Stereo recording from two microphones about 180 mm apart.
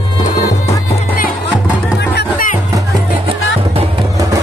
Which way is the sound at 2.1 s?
65° left (ahead or behind).